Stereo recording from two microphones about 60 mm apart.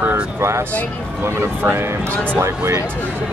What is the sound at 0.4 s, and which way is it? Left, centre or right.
Speech, right.